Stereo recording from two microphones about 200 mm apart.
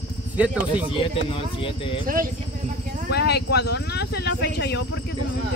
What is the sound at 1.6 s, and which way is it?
Speech, 25° left (ahead or behind).